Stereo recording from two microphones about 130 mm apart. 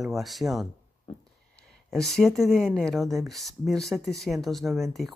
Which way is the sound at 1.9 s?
5° left (ahead or behind).